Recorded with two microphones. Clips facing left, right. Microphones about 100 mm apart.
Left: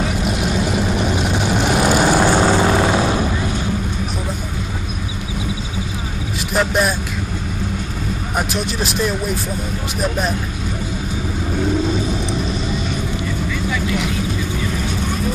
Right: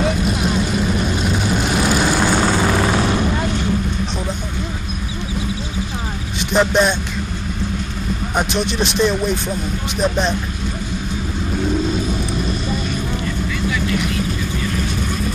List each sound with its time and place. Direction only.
0.9 s vehicle: 15° left (ahead or behind)
6.5 s speech: 5° left (ahead or behind)
8.4 s speech: 5° left (ahead or behind)